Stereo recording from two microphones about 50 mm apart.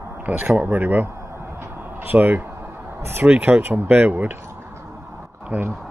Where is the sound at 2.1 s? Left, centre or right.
Right.